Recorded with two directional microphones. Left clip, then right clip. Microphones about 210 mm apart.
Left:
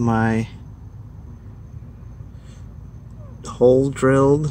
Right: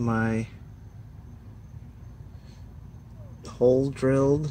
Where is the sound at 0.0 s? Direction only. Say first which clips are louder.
Left 7 dB; 5° left (ahead or behind).